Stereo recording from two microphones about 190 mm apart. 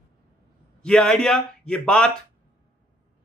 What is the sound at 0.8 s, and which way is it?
A man's voice, 5° left (ahead or behind).